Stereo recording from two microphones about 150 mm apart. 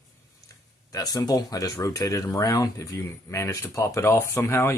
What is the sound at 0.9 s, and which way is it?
Speech, 25° left (ahead or behind).